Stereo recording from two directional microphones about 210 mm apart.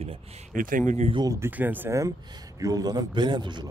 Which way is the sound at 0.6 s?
40° right (ahead or behind).